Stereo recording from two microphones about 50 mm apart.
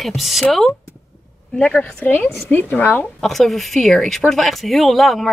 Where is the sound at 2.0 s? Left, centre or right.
Left.